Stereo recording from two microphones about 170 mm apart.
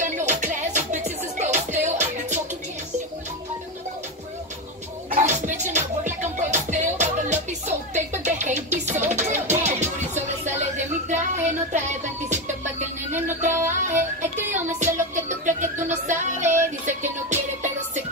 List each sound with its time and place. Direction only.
0.0 s music: 45° right (ahead or behind)
5.2 s music: 45° right (ahead or behind)
13.4 s music: 45° right (ahead or behind)